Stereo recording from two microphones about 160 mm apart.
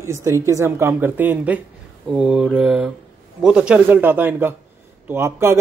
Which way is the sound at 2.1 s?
5° right (ahead or behind).